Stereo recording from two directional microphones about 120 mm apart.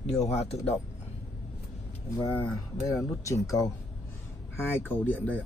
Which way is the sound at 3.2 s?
25° left (ahead or behind).